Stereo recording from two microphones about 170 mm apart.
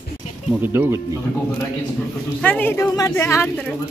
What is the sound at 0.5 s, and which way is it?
Speech, 10° right (ahead or behind).